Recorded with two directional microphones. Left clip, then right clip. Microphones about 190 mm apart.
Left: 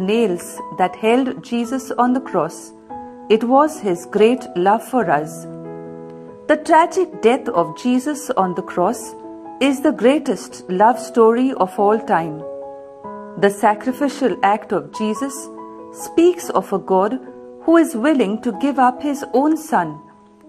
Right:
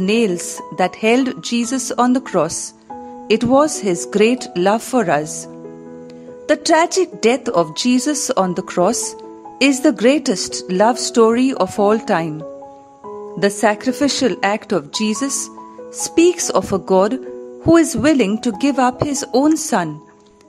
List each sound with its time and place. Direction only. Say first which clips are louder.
0.0 s speech: right 1 dB; 35° right (ahead or behind)
6.4 s speech: left 1 dB; 35° right (ahead or behind)
13.4 s speech: left 1 dB; 30° right (ahead or behind)